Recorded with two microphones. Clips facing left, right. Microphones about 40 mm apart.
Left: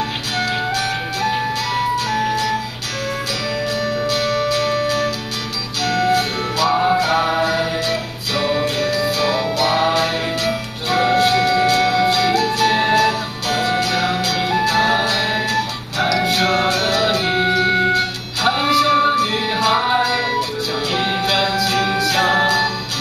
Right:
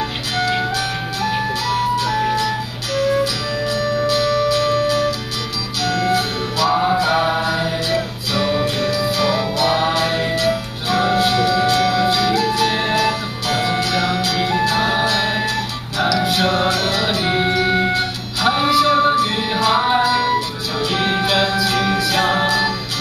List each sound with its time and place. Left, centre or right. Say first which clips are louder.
0.4 s music: right 1 dB; centre
3.8 s music: right 2 dB; centre
4.5 s music: right 2 dB; centre
7.1 s music: even; centre